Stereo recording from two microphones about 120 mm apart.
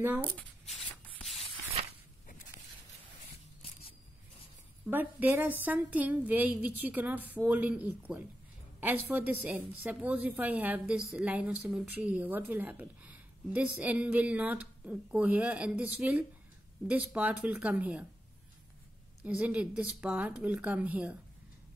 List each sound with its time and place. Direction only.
0.0 s speech: 15° right (ahead or behind)
4.8 s speech: 15° right (ahead or behind)
19.2 s speech: 10° right (ahead or behind)